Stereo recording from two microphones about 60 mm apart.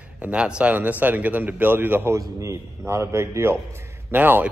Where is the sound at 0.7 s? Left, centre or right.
Right.